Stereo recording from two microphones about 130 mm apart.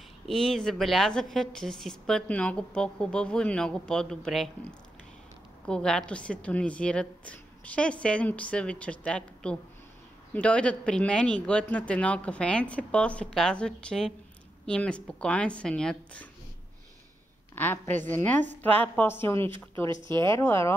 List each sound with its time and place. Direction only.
0.3 s a woman's voice: centre (ahead or behind)
17.6 s a woman's voice: 15° left (ahead or behind)